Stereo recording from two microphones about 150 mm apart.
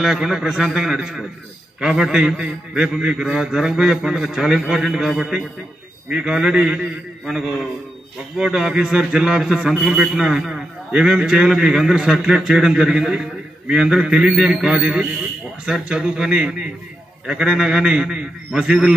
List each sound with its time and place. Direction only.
0.0 s a man's voice: 5° right (ahead or behind)